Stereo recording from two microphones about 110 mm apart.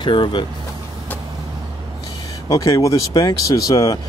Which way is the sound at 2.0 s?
30° left (ahead or behind).